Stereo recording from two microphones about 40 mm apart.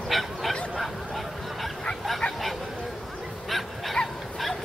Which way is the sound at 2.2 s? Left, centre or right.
Left.